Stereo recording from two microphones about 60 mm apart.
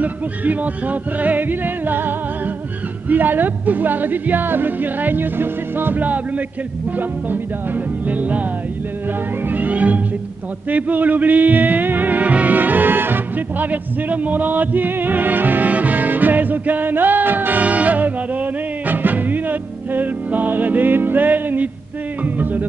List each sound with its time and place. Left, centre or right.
0.0 s music: right
3.1 s speech: right
7.0 s music: right
9.5 s music: right